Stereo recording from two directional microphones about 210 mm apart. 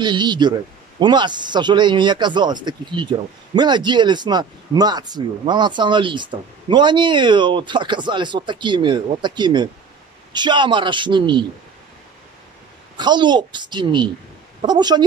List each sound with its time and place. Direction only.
0.0 s speech: 20° right (ahead or behind)
12.9 s speech: 20° right (ahead or behind)